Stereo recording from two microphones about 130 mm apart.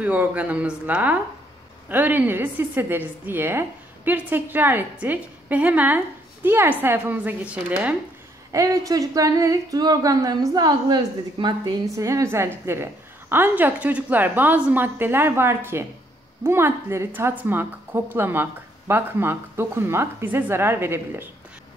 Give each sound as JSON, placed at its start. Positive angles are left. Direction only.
{"t": 0.0, "sound": "a woman's voice", "side_deg": -10}
{"t": 8.5, "sound": "speech", "side_deg": -25}
{"t": 12.0, "sound": "a woman's voice", "side_deg": -25}